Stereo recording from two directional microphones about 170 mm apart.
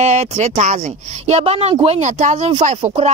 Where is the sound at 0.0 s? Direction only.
40° right (ahead or behind).